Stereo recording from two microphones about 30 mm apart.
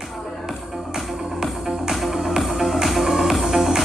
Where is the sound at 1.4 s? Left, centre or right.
Centre.